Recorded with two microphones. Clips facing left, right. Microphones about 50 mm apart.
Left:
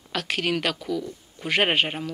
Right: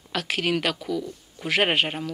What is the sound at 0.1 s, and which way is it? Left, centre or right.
Speech, centre.